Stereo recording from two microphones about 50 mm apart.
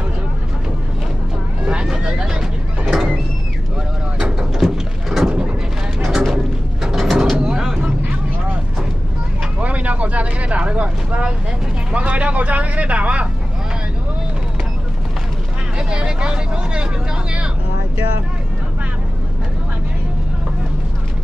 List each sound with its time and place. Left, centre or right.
1.7 s vehicle: centre
2.9 s door: centre
4.6 s a sound: centre
6.2 s music: centre
7.3 s vehicle: centre
9.6 s vehicle: right
15.8 s vehicle: centre